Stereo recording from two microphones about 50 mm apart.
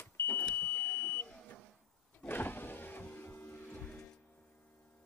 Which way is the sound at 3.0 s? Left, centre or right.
Left.